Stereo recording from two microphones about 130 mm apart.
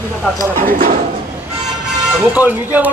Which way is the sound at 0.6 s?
90° right.